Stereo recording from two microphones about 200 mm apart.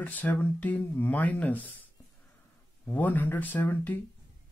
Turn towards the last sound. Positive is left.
turn(degrees=10)  # may be behind; listen again after turning